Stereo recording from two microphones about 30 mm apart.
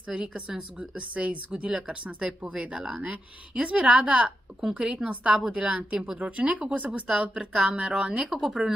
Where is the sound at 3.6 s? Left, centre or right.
Right.